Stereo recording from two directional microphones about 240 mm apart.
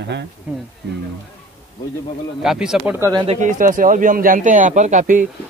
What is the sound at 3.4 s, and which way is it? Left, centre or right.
A man's voice, right.